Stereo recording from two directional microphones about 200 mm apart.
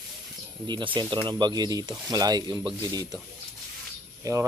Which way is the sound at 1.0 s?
20° right (ahead or behind).